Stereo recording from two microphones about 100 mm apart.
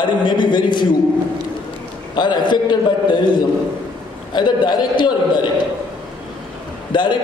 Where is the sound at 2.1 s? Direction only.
50° left (ahead or behind).